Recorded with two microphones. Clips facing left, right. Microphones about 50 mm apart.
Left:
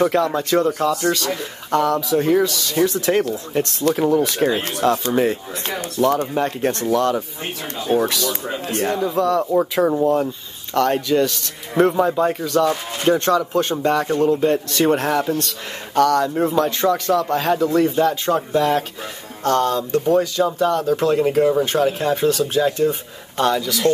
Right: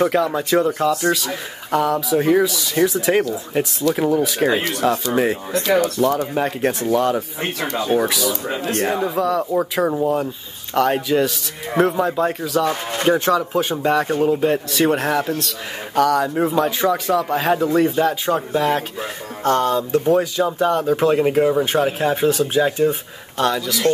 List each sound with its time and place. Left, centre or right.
0.0 s speech: centre
4.5 s speech: right
4.7 s speech: centre